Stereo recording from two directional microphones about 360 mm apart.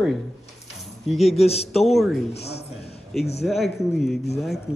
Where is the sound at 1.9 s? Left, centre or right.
Centre.